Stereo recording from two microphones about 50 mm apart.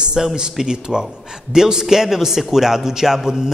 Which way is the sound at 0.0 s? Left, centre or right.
Centre.